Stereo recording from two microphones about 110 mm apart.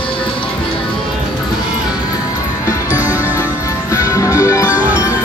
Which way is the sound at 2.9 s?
15° right (ahead or behind).